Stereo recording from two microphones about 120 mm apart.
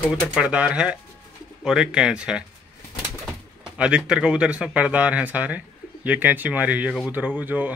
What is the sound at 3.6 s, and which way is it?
Speech, 5° right (ahead or behind).